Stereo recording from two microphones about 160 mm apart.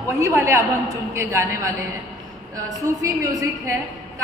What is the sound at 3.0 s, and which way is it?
Speech, 20° right (ahead or behind).